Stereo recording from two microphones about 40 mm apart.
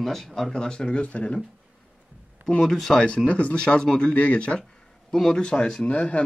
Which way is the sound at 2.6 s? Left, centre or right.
Centre.